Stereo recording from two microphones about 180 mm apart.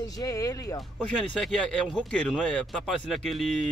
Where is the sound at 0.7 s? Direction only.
Centre (ahead or behind).